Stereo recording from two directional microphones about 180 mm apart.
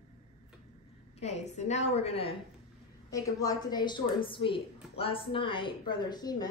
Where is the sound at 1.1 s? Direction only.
35° left (ahead or behind).